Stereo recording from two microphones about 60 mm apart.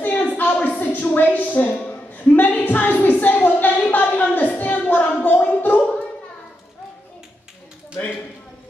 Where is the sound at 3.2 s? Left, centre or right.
Left.